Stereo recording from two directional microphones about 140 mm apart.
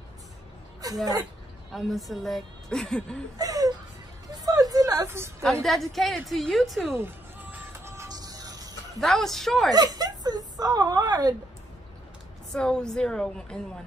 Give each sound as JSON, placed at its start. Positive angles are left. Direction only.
{"t": 0.8, "sound": "a sound", "side_deg": -25}
{"t": 1.7, "sound": "a woman's voice", "side_deg": 0}
{"t": 3.3, "sound": "laughter", "side_deg": -25}
{"t": 4.3, "sound": "music", "side_deg": -25}
{"t": 5.4, "sound": "a woman's voice", "side_deg": 0}
{"t": 7.0, "sound": "music", "side_deg": -15}
{"t": 9.0, "sound": "a woman's voice", "side_deg": 0}
{"t": 9.7, "sound": "speech", "side_deg": -25}
{"t": 12.5, "sound": "a woman's voice", "side_deg": 5}